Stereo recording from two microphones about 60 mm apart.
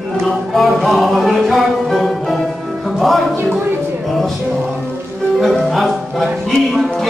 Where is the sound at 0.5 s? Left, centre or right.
Centre.